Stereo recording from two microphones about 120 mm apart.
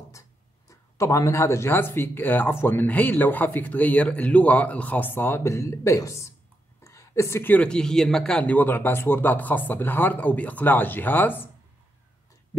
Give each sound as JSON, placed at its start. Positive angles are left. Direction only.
{"t": 0.7, "sound": "speech", "side_deg": 25}